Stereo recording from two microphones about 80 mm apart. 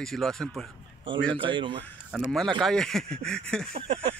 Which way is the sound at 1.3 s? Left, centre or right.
Right.